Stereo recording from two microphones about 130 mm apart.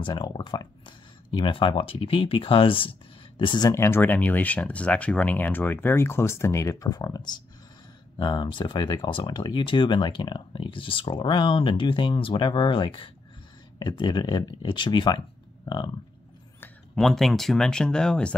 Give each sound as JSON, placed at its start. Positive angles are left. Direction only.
{"t": 0.0, "sound": "speech", "side_deg": 35}
{"t": 3.7, "sound": "speech", "side_deg": 20}
{"t": 16.6, "sound": "speech", "side_deg": 5}